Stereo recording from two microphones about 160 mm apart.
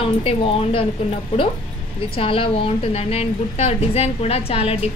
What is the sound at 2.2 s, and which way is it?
A woman's voice, 35° left (ahead or behind).